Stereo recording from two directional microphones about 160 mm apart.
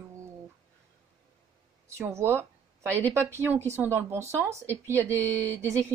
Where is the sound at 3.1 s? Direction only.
15° right (ahead or behind).